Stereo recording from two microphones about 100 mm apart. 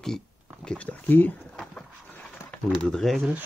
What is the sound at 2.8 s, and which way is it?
Speech, 5° left (ahead or behind).